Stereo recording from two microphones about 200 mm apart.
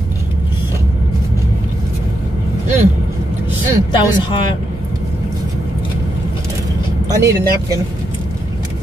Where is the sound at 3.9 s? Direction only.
25° left (ahead or behind).